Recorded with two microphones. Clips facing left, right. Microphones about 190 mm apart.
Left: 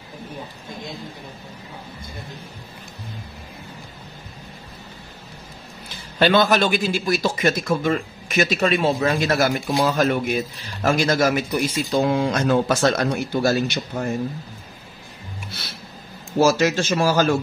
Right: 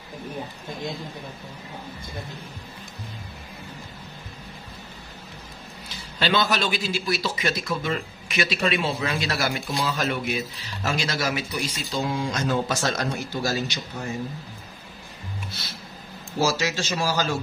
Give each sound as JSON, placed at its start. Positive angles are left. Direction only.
{"t": 6.1, "sound": "speech", "side_deg": 55}
{"t": 16.3, "sound": "speech", "side_deg": 55}